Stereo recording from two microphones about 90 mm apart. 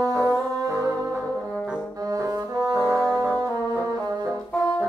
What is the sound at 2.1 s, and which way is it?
Brass instrument, 40° right (ahead or behind).